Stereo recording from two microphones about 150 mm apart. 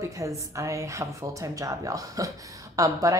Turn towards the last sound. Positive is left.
turn(degrees=-20)  # may be behind; listen again after turning